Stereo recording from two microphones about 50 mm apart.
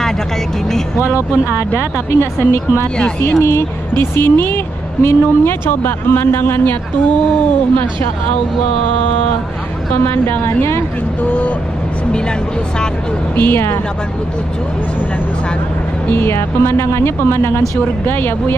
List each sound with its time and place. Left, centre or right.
1.0 s speech: right
2.1 s speech: left
3.9 s a woman's voice: left
10.0 s a woman's voice: left
11.2 s speech: left
13.4 s a woman's voice: left
16.1 s a woman's voice: left